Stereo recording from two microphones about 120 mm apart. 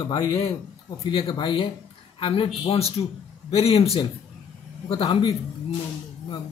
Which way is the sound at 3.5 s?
55° left (ahead or behind).